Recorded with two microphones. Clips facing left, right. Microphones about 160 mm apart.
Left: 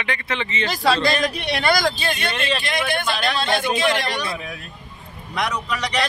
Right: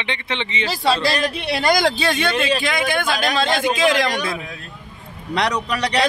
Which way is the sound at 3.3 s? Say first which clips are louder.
Right 2 dB; 90° right.